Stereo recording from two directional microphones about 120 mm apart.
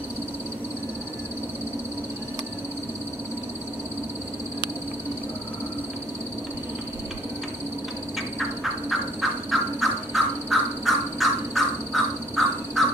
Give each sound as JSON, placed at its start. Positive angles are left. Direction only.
{"t": 9.2, "sound": "crow", "side_deg": 0}